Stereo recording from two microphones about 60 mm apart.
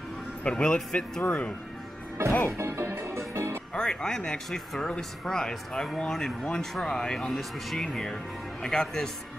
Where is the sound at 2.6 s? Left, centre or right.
Right.